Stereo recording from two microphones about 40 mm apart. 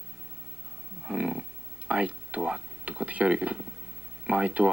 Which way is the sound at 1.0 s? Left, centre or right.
Right.